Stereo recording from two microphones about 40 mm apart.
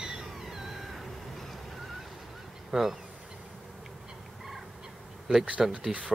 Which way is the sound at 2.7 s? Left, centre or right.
Centre.